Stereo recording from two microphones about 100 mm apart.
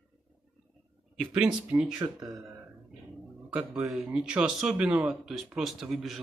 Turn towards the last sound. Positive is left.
turn(degrees=0)  # may be behind; listen again after turning